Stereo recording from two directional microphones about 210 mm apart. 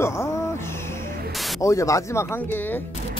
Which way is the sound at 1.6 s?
15° left (ahead or behind).